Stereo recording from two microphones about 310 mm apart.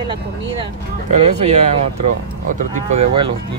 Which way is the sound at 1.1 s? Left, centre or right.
Right.